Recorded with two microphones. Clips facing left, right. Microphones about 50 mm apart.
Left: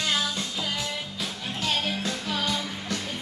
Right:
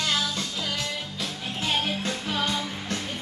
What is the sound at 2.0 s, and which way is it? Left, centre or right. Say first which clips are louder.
Music: right 1 dB; right.